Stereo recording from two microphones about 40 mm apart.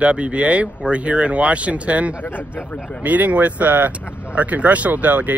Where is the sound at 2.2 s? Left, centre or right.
Left.